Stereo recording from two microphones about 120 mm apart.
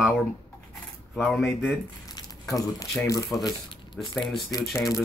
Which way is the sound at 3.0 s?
25° left (ahead or behind).